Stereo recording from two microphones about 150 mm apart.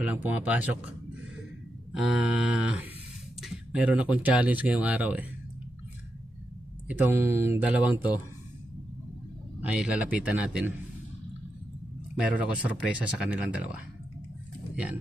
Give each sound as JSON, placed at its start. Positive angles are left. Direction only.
{"t": 0.0, "sound": "speech", "side_deg": -10}
{"t": 1.9, "sound": "speech", "side_deg": -5}
{"t": 6.9, "sound": "speech", "side_deg": -10}
{"t": 9.6, "sound": "speech", "side_deg": -5}
{"t": 12.2, "sound": "speech", "side_deg": -10}